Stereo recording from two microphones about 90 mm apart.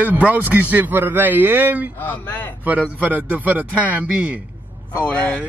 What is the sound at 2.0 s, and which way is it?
Speech, 25° left (ahead or behind).